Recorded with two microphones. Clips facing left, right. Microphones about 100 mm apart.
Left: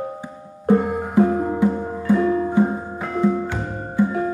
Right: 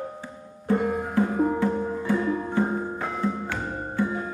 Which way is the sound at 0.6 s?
15° left (ahead or behind).